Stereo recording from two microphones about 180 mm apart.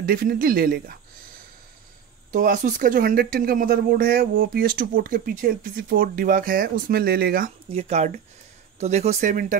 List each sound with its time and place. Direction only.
0.0 s speech: 55° right (ahead or behind)
2.3 s speech: 45° right (ahead or behind)
7.7 s speech: 35° right (ahead or behind)